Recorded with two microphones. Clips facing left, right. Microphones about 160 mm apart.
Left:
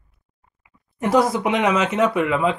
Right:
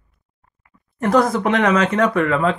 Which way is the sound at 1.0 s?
50° right (ahead or behind).